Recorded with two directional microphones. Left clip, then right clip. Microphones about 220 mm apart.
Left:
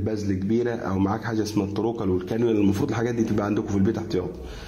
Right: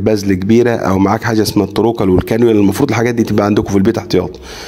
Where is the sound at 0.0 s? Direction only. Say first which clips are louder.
Right 14 dB; 40° right (ahead or behind).